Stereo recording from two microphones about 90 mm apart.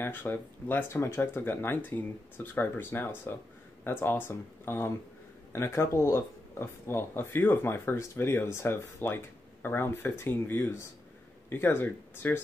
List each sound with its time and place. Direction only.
0.0 s speech: 25° left (ahead or behind)